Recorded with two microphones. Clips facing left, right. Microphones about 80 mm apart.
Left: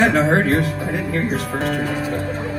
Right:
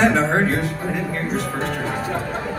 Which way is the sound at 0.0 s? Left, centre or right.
Left.